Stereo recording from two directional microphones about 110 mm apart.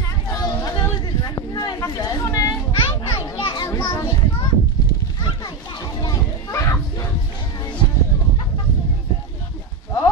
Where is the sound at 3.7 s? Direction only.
25° left (ahead or behind).